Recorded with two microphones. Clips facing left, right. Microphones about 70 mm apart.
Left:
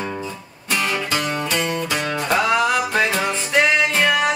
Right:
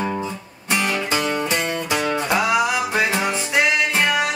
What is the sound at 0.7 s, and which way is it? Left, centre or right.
Music, centre.